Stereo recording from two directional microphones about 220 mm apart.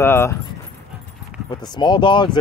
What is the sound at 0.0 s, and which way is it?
Speech, 10° left (ahead or behind).